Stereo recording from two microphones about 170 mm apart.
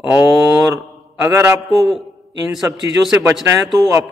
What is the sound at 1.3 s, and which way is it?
Speech, 15° right (ahead or behind).